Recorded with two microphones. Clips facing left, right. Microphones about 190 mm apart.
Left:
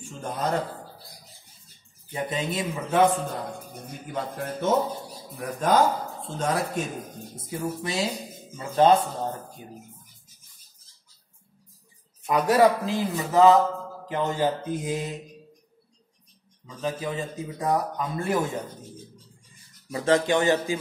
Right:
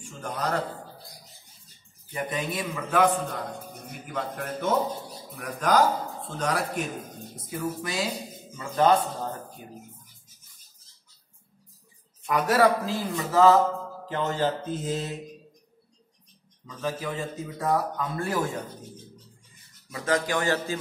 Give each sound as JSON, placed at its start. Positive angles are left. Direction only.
{"t": 0.2, "sound": "a man's voice", "side_deg": 25}
{"t": 2.1, "sound": "a man's voice", "side_deg": 25}
{"t": 4.1, "sound": "a man's voice", "side_deg": 25}
{"t": 12.4, "sound": "speech", "side_deg": 20}
{"t": 16.6, "sound": "speech", "side_deg": 15}
{"t": 19.9, "sound": "a man's voice", "side_deg": 25}